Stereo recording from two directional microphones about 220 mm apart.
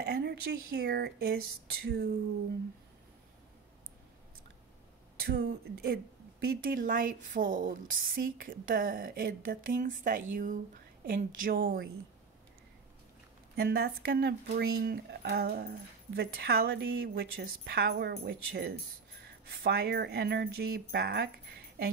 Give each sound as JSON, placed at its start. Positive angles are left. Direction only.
{"t": 0.0, "sound": "a woman's voice", "side_deg": -50}
{"t": 5.2, "sound": "a woman's voice", "side_deg": -45}
{"t": 13.6, "sound": "a woman's voice", "side_deg": -45}